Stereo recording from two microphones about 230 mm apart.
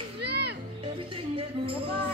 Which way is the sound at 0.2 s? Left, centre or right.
Right.